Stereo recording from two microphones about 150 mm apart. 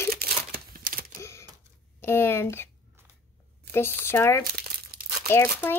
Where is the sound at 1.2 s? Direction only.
15° left (ahead or behind).